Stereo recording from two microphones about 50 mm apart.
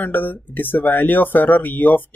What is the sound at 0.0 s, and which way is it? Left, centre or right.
Speech, left.